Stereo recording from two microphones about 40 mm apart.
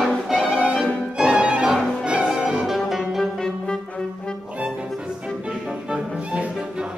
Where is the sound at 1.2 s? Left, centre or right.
Right; by 3.2 s centre.